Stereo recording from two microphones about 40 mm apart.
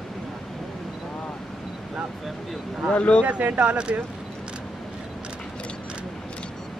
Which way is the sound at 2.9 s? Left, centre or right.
Left.